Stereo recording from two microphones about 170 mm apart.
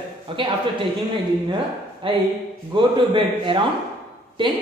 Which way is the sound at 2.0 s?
30° right (ahead or behind).